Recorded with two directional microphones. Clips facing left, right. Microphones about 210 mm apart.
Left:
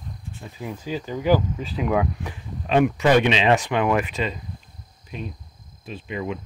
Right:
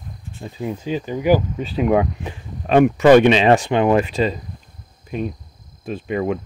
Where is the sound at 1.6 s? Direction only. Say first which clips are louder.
Right 5 dB; 25° right (ahead or behind).